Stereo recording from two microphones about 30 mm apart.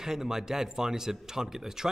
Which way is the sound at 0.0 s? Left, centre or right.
Centre.